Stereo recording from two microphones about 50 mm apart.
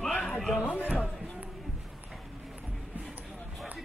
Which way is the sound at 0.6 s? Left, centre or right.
Left.